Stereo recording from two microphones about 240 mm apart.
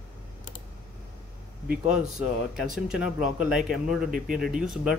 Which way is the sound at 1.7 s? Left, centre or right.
Centre.